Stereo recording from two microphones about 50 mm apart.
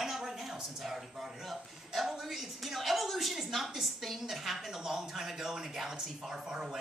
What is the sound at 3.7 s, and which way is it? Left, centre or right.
A woman's voice, centre.